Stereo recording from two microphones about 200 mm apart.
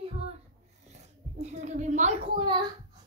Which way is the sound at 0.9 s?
35° right (ahead or behind).